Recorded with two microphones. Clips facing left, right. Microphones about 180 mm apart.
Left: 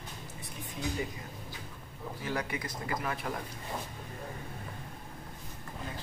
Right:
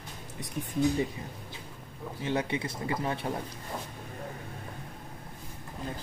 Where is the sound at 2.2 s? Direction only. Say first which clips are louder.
Right 5 dB; 25° right (ahead or behind).